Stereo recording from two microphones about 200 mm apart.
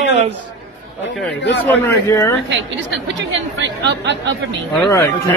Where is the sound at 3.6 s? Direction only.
65° right (ahead or behind).